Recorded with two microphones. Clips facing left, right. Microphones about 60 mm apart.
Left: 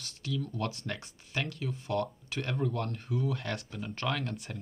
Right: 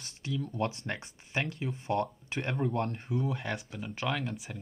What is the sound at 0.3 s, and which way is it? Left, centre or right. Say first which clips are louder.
Speech: right 2 dB; right.